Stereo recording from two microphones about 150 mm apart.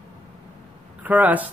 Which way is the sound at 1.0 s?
10° right (ahead or behind).